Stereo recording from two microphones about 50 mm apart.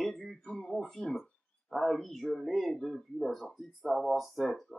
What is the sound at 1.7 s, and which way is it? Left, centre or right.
Speech, centre.